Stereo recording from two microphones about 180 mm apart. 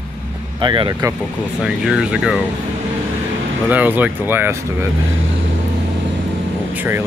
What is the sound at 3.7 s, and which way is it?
Speech, 10° right (ahead or behind).